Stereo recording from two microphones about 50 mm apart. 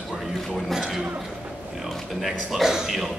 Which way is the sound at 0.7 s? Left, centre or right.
Centre.